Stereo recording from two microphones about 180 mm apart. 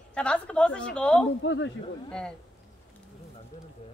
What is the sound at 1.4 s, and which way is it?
Speech, 90° left.